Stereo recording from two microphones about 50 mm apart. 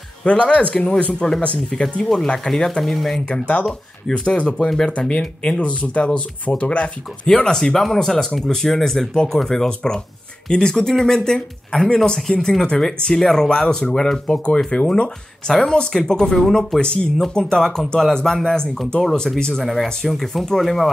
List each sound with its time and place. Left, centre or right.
0.2 s speech: left
1.7 s speech: centre
3.3 s speech: left
3.6 s speech: centre
7.3 s speech: centre
16.8 s speech: centre